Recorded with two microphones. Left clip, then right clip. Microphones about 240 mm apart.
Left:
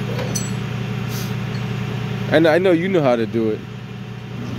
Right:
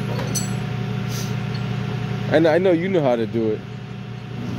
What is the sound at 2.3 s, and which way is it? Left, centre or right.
Speech, centre.